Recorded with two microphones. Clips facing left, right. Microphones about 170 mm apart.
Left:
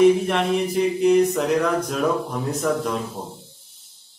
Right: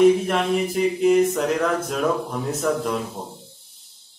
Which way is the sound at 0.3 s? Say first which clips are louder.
Even; centre (ahead or behind).